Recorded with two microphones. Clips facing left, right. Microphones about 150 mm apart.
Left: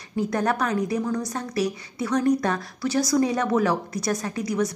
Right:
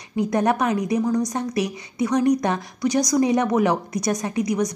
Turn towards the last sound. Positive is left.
turn(degrees=-20)  # may be behind; listen again after turning